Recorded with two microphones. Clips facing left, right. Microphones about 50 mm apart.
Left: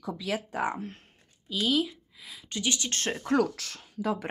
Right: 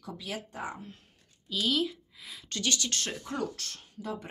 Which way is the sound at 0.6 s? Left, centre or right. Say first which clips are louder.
Left 8 dB; left.